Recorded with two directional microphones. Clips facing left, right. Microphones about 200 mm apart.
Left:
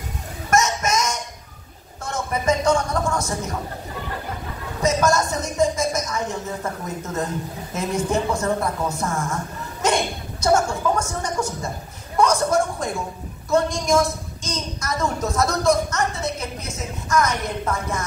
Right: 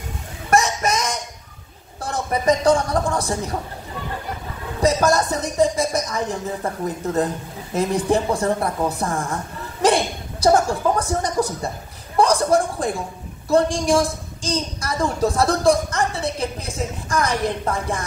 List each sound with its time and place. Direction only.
0.5 s a sound: 35° right (ahead or behind)
2.0 s a man's voice: 35° right (ahead or behind)
4.8 s speech: 35° right (ahead or behind)
7.7 s a woman's voice: 35° right (ahead or behind)